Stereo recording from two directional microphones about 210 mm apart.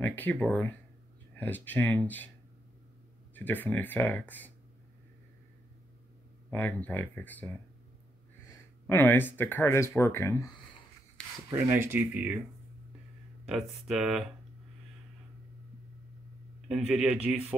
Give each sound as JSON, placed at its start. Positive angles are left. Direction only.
{"t": 0.0, "sound": "speech", "side_deg": 10}
{"t": 3.3, "sound": "speech", "side_deg": 10}
{"t": 6.5, "sound": "speech", "side_deg": 10}
{"t": 8.5, "sound": "speech", "side_deg": 10}
{"t": 11.2, "sound": "rub", "side_deg": 5}
{"t": 11.9, "sound": "speech", "side_deg": -10}
{"t": 13.5, "sound": "speech", "side_deg": 0}
{"t": 16.6, "sound": "speech", "side_deg": -5}